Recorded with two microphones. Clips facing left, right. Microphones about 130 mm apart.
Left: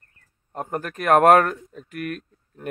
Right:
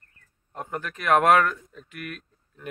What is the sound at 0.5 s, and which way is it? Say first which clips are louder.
Speech: left 4 dB; 45° left (ahead or behind).